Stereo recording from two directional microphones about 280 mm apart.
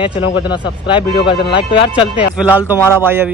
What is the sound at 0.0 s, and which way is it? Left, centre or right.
Speech, centre.